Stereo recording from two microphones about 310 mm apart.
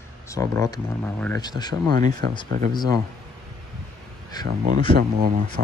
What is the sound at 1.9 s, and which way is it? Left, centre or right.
Speech, right.